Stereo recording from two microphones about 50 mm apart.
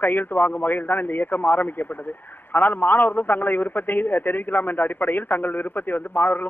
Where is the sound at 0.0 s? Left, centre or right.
Left.